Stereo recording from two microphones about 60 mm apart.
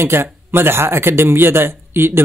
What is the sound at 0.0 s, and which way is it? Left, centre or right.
Speech, right.